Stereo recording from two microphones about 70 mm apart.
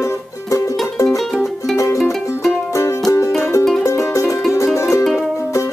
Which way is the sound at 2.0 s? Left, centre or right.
Centre.